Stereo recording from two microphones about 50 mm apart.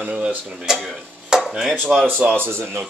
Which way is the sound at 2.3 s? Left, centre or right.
Right.